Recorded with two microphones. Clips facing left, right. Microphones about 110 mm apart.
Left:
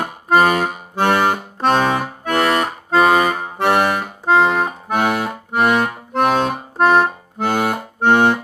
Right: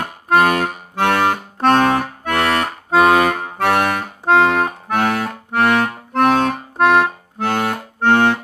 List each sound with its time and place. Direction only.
0.0 s accordion: 10° left (ahead or behind)
2.9 s accordion: 5° right (ahead or behind)
3.3 s accordion: 10° left (ahead or behind)
4.3 s accordion: 5° right (ahead or behind)
4.6 s accordion: 10° left (ahead or behind)